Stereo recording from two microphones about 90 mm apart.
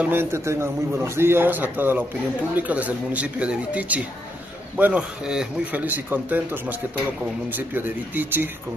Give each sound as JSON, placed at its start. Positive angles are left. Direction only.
{"t": 0.0, "sound": "a man's voice", "side_deg": -25}
{"t": 5.8, "sound": "a man's voice", "side_deg": -20}